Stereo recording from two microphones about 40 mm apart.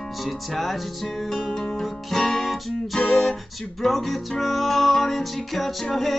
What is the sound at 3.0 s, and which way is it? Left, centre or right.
Music, centre.